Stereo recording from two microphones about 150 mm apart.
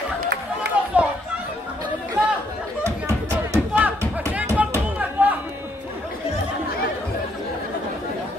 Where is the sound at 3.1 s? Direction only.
20° right (ahead or behind).